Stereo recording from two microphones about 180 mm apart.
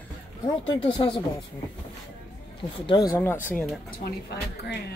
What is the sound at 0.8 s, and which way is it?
Speech, 30° left (ahead or behind).